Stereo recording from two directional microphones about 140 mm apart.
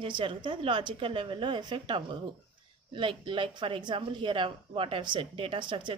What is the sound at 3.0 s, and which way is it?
Speech, 35° right (ahead or behind).